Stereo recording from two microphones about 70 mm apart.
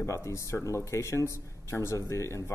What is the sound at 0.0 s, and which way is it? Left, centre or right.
Speech, left.